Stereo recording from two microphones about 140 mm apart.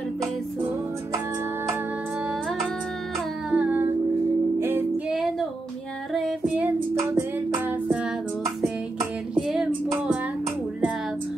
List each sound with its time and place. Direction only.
3.4 s music: 10° right (ahead or behind)
6.1 s female singing: centre (ahead or behind)
7.0 s music: 15° right (ahead or behind)